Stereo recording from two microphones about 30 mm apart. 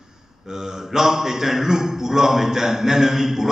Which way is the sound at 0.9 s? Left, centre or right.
Centre.